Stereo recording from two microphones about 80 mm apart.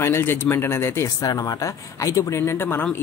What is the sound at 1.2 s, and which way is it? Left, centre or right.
Speech, left.